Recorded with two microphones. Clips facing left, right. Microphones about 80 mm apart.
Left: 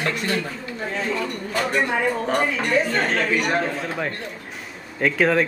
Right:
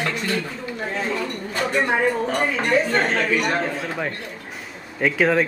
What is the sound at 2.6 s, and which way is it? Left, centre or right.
Speech, right.